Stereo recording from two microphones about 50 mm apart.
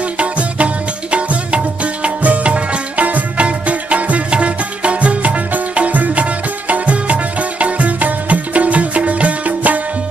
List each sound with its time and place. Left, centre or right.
0.0 s music: right